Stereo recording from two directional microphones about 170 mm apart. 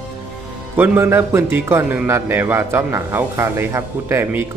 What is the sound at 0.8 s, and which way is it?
A man's voice, 15° right (ahead or behind).